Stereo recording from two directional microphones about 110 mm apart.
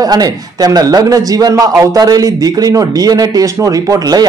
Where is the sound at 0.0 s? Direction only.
35° right (ahead or behind).